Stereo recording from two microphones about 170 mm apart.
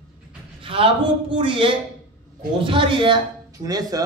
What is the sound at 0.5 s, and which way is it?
A man's voice, 30° right (ahead or behind).